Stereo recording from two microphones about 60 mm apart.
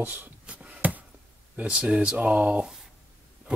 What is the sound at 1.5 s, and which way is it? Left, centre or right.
Speech, right.